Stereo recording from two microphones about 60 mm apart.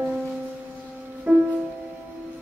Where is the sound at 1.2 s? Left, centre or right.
Right.